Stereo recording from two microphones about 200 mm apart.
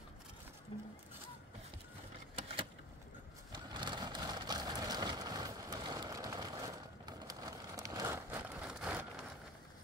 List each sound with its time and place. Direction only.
0.7 s music: 25° left (ahead or behind)
2.3 s a sound: 30° right (ahead or behind)
3.5 s vehicle: 20° right (ahead or behind); by 9.0 s 5° right (ahead or behind)